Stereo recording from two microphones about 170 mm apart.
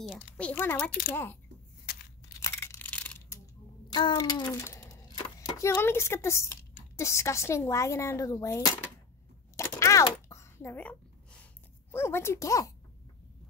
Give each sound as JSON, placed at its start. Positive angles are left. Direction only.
{"t": 0.0, "sound": "speech", "side_deg": 0}
{"t": 0.5, "sound": "speech", "side_deg": 10}
{"t": 2.4, "sound": "tearing", "side_deg": 15}
{"t": 3.9, "sound": "a sound", "side_deg": 25}
{"t": 5.6, "sound": "speech", "side_deg": 15}
{"t": 9.6, "sound": "a sound", "side_deg": 20}
{"t": 11.9, "sound": "speech", "side_deg": 15}